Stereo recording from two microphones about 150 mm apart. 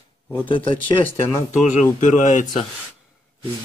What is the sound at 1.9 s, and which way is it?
Speech, 55° left (ahead or behind).